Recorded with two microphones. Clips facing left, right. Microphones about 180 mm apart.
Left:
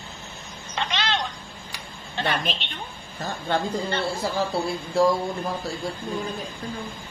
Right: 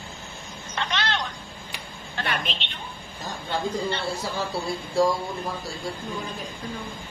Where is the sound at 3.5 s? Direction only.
55° left (ahead or behind).